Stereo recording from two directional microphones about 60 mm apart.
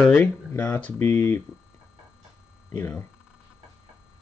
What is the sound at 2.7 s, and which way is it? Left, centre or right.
Speech, left.